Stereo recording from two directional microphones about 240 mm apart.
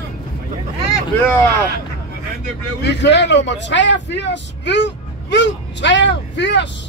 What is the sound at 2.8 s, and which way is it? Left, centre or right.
A man's voice, left.